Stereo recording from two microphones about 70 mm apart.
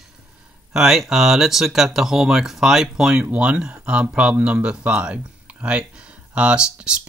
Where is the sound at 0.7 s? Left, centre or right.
Centre.